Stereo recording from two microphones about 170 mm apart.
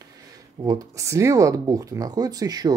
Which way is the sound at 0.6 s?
20° right (ahead or behind).